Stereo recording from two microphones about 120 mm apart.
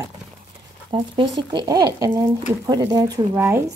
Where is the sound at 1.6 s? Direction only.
30° right (ahead or behind).